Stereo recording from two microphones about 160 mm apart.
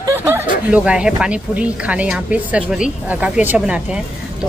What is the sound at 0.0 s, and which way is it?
Snicker, 20° right (ahead or behind).